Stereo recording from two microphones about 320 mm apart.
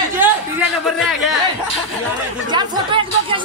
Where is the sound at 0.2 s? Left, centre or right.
Centre.